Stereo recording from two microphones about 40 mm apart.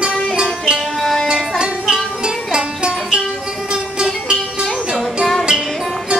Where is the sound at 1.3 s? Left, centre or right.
Right.